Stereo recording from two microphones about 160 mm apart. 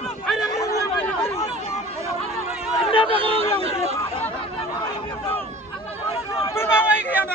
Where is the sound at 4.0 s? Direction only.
35° left (ahead or behind).